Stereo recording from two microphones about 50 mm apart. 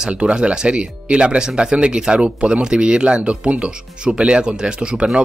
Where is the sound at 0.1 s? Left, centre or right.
Right.